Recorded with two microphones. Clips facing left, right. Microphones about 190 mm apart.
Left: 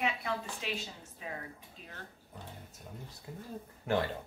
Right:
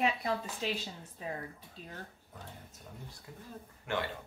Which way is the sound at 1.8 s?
35° right (ahead or behind).